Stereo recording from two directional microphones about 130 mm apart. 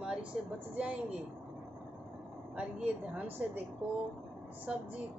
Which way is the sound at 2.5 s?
10° right (ahead or behind).